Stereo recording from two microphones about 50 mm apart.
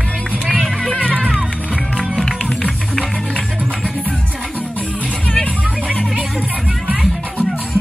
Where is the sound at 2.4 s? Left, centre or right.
Left.